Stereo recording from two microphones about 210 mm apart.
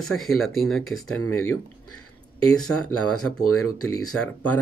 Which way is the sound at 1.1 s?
90° left.